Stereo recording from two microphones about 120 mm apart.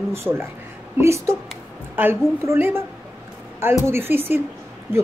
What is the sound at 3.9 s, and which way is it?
Speech, 20° right (ahead or behind).